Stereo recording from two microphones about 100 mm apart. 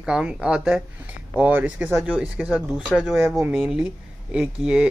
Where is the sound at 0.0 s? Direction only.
10° right (ahead or behind).